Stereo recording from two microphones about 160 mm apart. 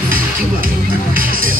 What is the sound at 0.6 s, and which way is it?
Music, 60° right (ahead or behind).